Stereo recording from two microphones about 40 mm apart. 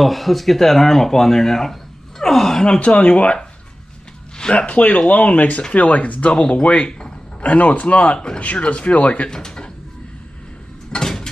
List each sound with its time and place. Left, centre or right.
0.0 s speech: centre
2.6 s speech: left
4.6 s speech: left
9.3 s speech: centre
10.9 s a sound: centre